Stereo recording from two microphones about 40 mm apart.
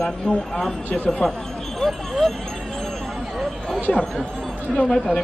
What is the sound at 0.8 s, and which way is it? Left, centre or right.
Speech, left.